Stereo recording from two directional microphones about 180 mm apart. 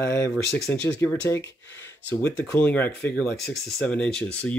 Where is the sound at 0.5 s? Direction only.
60° left (ahead or behind).